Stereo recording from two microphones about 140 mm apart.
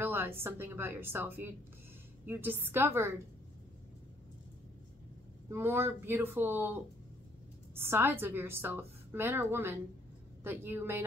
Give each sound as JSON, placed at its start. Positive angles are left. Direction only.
{"t": 0.0, "sound": "a sound", "side_deg": -15}
{"t": 0.4, "sound": "a woman's voice", "side_deg": -15}
{"t": 5.5, "sound": "a woman's voice", "side_deg": -15}